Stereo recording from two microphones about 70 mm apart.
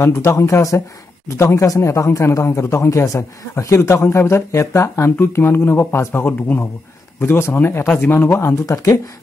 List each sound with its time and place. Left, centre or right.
0.0 s a man's voice: left
8.6 s speech: left